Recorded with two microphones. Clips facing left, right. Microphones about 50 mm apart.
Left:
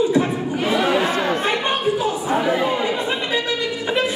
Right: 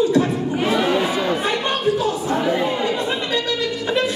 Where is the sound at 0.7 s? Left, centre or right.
Centre.